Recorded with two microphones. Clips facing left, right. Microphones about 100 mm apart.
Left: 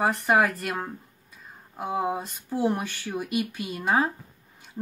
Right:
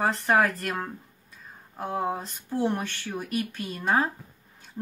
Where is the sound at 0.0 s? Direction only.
Centre (ahead or behind).